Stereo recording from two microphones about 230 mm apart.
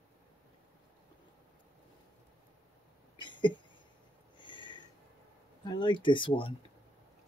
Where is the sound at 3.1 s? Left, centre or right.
Centre.